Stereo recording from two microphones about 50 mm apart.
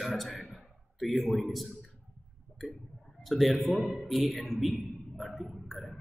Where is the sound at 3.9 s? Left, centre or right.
Centre.